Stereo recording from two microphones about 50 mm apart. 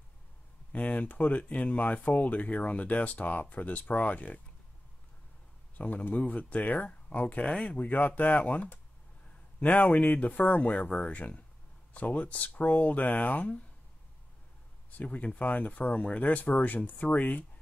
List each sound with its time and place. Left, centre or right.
0.7 s speech: left
5.8 s speech: left
9.8 s speech: left
15.0 s speech: left